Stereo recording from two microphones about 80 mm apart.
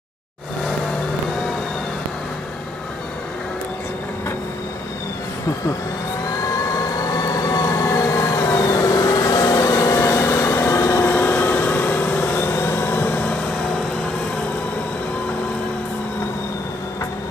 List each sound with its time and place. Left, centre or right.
6.4 s vehicle: left